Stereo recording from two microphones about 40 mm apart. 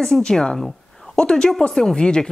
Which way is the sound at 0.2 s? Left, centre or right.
Centre.